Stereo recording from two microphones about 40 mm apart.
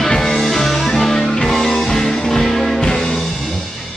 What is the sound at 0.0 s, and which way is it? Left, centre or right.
Music, centre.